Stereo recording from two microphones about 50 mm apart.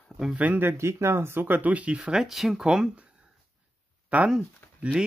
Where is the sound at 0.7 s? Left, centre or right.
Right.